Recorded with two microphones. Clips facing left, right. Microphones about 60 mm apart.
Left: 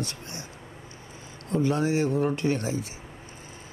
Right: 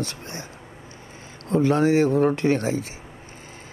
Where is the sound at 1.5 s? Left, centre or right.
Right.